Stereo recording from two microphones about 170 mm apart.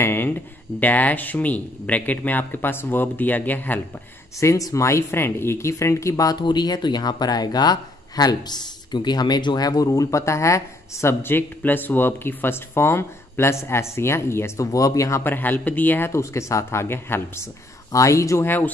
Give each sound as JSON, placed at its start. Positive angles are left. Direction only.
{"t": 0.0, "sound": "speech", "side_deg": 15}